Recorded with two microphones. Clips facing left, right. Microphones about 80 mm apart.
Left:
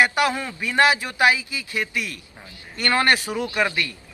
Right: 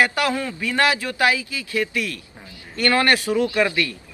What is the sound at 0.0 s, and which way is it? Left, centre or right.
A man's voice, left.